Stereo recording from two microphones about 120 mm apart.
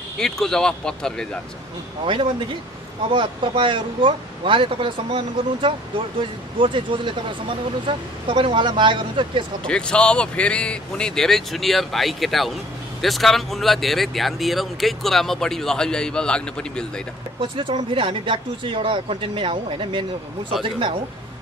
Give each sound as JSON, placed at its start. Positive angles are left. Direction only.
{"t": 0.2, "sound": "speech", "side_deg": 5}
{"t": 3.1, "sound": "speech", "side_deg": -45}
{"t": 9.7, "sound": "speech", "side_deg": 5}
{"t": 17.4, "sound": "speech", "side_deg": -45}